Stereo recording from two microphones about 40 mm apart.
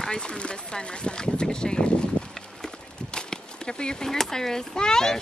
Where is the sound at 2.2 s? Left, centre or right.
Left.